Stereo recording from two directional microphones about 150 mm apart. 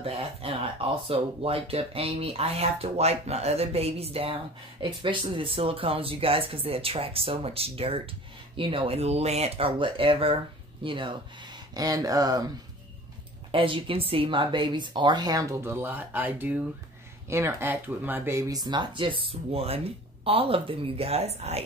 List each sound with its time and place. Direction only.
0.0 s speech: 40° right (ahead or behind)
13.5 s speech: 35° right (ahead or behind)